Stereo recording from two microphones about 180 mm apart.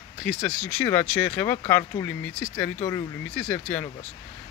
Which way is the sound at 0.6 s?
10° left (ahead or behind).